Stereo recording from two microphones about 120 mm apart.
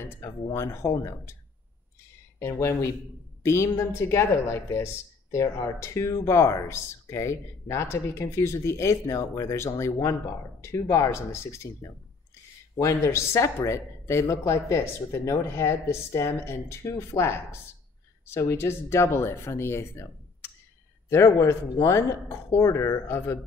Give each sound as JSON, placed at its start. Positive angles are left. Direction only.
{"t": 0.0, "sound": "speech", "side_deg": 20}
{"t": 2.3, "sound": "speech", "side_deg": 25}